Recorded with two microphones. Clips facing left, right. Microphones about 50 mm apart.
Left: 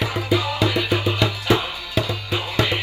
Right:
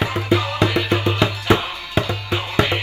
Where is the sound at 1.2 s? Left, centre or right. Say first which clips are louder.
Right 2 dB; right.